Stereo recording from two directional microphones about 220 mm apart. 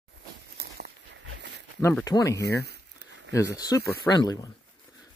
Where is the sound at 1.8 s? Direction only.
10° left (ahead or behind).